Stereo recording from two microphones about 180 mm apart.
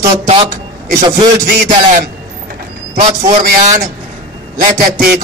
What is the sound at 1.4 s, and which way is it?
Speech, 55° right (ahead or behind).